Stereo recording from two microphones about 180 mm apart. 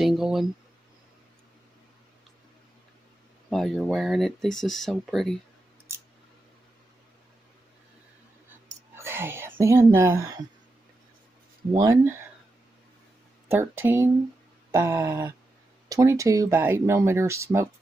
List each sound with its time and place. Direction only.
0.0 s a sound: centre (ahead or behind)
3.4 s speech: centre (ahead or behind)
5.9 s a sound: 15° right (ahead or behind)
8.9 s speech: 15° right (ahead or behind)
11.7 s speech: 20° right (ahead or behind)
13.5 s speech: 15° right (ahead or behind)